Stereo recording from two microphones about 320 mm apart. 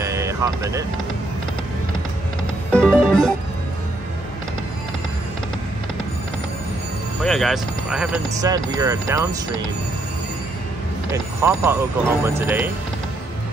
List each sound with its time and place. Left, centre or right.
0.0 s a sound: centre
2.7 s music: centre
7.2 s speech: centre
11.1 s speech: centre